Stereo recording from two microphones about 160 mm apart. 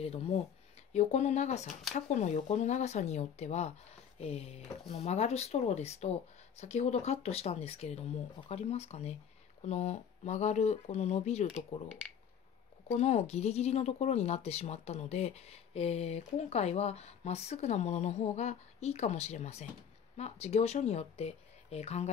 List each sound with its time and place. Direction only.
0.0 s speech: 40° left (ahead or behind)
12.9 s speech: 40° left (ahead or behind)